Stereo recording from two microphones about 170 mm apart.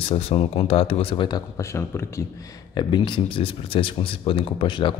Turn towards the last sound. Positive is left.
turn(degrees=30)  # may be behind; listen again after turning